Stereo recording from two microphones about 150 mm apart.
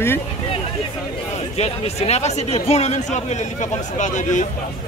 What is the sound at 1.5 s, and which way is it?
Speech, 45° left (ahead or behind).